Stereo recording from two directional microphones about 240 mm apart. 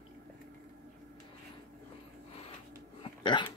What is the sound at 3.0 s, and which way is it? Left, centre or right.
Hiccup, centre.